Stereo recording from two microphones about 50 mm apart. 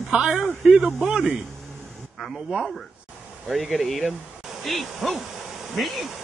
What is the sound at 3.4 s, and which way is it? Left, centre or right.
Speech, centre.